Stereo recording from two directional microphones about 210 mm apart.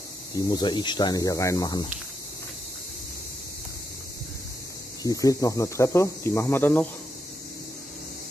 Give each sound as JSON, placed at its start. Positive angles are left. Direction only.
{"t": 0.3, "sound": "speech", "side_deg": 15}
{"t": 5.0, "sound": "speech", "side_deg": 15}